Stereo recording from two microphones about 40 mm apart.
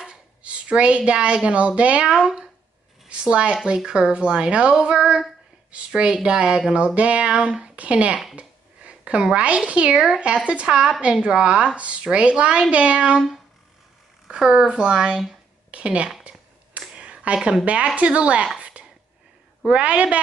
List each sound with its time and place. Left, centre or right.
0.4 s a woman's voice: right
6.1 s speech: centre
6.7 s speech: right
7.7 s a woman's voice: right
8.4 s a sound: right
9.7 s a woman's voice: right
9.9 s speech: centre
10.2 s a woman's voice: right
14.2 s a woman's voice: centre
15.7 s a woman's voice: right
16.9 s a sound: right
17.9 s speech: right
18.6 s a sound: right
19.7 s a woman's voice: right